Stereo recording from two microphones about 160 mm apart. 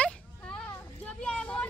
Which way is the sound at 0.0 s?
5° left (ahead or behind).